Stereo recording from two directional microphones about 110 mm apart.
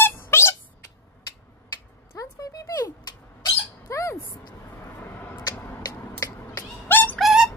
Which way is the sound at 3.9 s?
25° left (ahead or behind).